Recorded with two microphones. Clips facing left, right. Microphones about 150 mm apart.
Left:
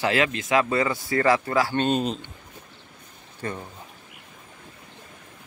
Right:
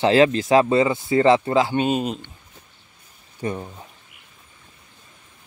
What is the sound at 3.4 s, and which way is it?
Speech, 15° right (ahead or behind).